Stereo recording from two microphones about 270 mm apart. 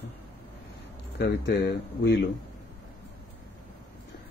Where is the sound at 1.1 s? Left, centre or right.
Left.